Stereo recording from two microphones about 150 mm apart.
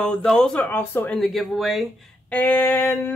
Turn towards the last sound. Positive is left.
turn(degrees=15)  # may be behind; listen again after turning